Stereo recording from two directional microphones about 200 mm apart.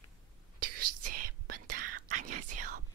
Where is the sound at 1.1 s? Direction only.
45° right (ahead or behind).